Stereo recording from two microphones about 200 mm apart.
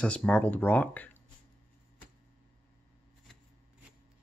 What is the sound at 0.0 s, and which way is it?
Speech, 5° left (ahead or behind).